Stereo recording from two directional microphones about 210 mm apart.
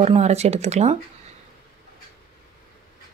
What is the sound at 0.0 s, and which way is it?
Speech, 30° right (ahead or behind).